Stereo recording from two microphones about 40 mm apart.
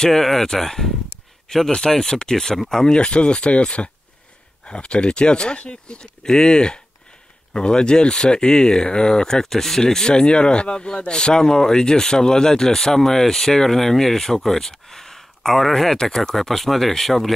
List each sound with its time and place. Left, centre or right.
0.0 s speech: centre